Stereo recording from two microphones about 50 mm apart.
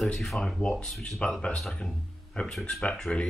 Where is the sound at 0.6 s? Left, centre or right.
Centre.